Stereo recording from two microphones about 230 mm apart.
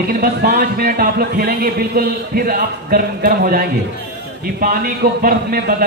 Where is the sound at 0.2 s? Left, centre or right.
Right.